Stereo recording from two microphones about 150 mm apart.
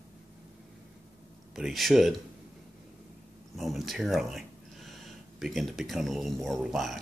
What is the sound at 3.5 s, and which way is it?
Speech, centre (ahead or behind).